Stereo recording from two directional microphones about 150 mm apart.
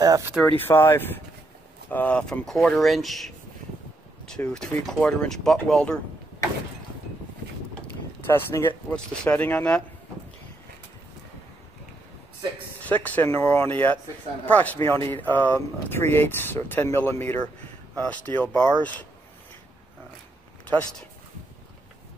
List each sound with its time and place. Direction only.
0.0 s speech: 25° right (ahead or behind)
0.5 s speech: 15° left (ahead or behind)
4.5 s speech: 5° left (ahead or behind)
8.3 s speech: 15° left (ahead or behind)
12.8 s speech: 10° left (ahead or behind)